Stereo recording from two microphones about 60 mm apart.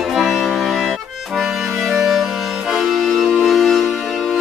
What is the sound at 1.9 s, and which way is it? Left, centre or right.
Music, centre.